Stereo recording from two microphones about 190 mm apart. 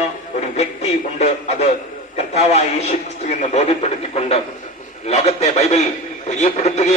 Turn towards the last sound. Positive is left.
turn(degrees=35)  # may be behind; listen again after turning